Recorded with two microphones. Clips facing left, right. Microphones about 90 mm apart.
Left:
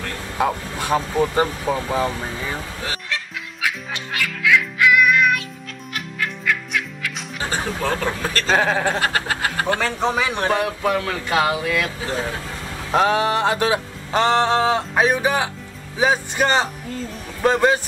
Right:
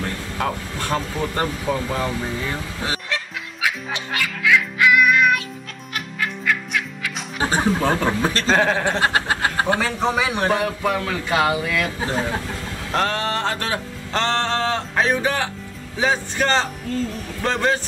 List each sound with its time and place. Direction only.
0.4 s music: 10° left (ahead or behind)
3.6 s music: centre (ahead or behind)
7.5 s speech: 20° right (ahead or behind)
8.5 s speech: 5° left (ahead or behind)
9.0 s a sound: 20° right (ahead or behind)
9.8 s speech: centre (ahead or behind)
12.9 s music: 10° left (ahead or behind)